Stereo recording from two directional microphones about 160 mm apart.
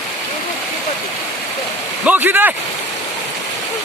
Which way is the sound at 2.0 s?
10° right (ahead or behind).